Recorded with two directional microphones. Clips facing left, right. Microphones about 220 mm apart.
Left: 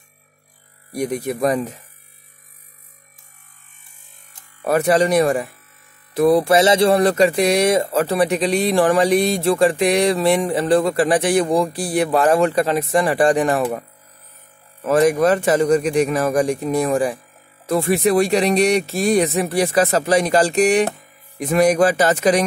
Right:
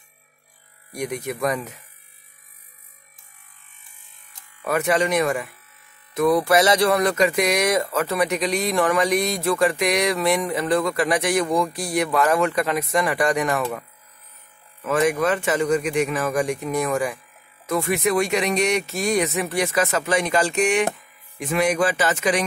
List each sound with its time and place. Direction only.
0.9 s speech: 35° left (ahead or behind)
4.6 s speech: 35° left (ahead or behind)